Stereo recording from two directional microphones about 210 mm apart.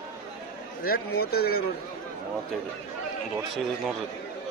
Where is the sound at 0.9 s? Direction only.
50° left (ahead or behind).